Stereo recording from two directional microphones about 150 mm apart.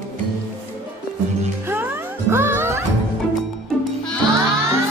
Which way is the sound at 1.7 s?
15° right (ahead or behind).